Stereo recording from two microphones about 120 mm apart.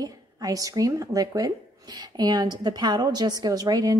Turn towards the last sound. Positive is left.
turn(degrees=-30)  # may be behind; listen again after turning